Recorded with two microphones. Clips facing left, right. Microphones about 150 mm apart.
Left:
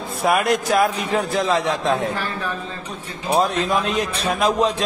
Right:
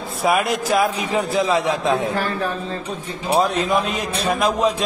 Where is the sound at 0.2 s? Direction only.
Centre (ahead or behind).